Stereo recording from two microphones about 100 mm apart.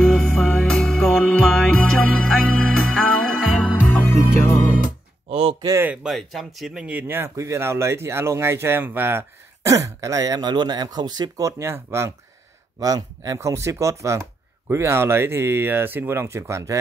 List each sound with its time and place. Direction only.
0.0 s music: 5° left (ahead or behind)
5.3 s a sound: 70° right (ahead or behind)
6.0 s speech: centre (ahead or behind); by 9.2 s 20° right (ahead or behind)
9.7 s speech: 35° right (ahead or behind)
12.8 s speech: 35° right (ahead or behind)